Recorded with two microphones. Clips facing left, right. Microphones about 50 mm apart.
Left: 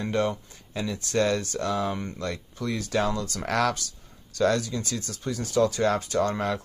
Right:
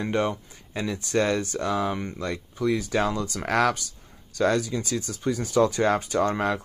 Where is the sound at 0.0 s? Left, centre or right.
Right.